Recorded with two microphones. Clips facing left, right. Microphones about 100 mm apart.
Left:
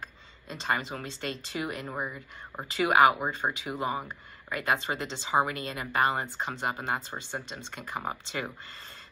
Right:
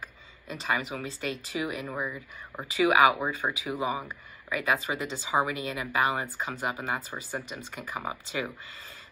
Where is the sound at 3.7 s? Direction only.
5° right (ahead or behind).